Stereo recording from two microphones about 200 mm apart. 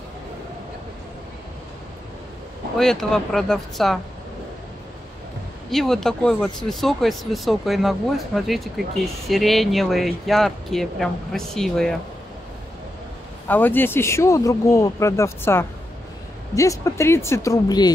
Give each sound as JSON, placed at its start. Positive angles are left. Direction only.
{"t": 2.8, "sound": "speech", "side_deg": 0}
{"t": 5.7, "sound": "speech", "side_deg": 0}
{"t": 13.5, "sound": "speech", "side_deg": 10}